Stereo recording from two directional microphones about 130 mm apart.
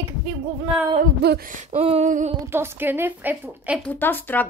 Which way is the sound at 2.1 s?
75° right (ahead or behind).